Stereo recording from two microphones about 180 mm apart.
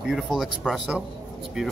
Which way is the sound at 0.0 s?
Centre (ahead or behind).